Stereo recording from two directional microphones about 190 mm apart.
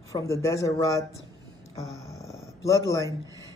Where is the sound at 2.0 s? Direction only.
15° left (ahead or behind).